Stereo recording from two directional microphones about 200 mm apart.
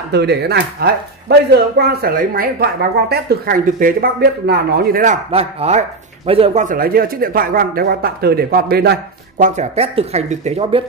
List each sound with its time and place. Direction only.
0.1 s speech: 55° right (ahead or behind)
5.3 s speech: 30° right (ahead or behind); by 9.5 s 50° right (ahead or behind)
9.6 s speech: 30° right (ahead or behind)